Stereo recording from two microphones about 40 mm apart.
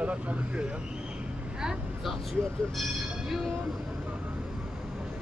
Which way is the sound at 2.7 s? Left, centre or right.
Centre.